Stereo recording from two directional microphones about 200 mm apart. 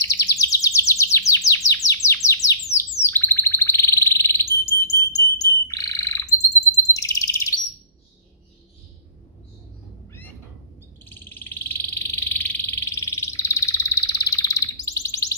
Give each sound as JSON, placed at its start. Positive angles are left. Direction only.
{"t": 0.3, "sound": "chirp", "side_deg": 15}
{"t": 11.1, "sound": "frog", "side_deg": 10}